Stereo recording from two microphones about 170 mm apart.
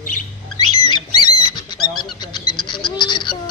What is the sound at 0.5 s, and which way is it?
Rodents, 25° left (ahead or behind).